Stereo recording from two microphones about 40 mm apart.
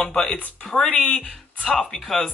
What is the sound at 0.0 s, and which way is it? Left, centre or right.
Speech, centre.